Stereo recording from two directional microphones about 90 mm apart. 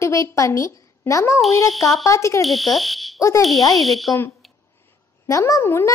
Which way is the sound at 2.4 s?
Centre (ahead or behind).